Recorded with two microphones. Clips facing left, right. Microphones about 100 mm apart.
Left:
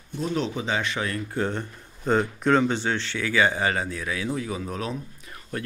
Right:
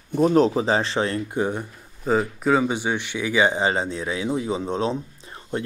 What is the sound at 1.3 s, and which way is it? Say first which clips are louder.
Speech: right 3 dB; 15° right (ahead or behind).